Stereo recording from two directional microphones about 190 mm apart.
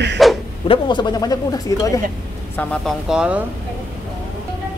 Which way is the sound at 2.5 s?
5° left (ahead or behind).